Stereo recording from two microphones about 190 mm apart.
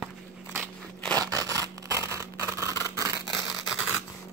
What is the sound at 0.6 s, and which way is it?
Crunch, 5° left (ahead or behind).